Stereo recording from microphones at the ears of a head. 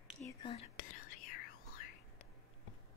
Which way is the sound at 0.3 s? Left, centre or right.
Left.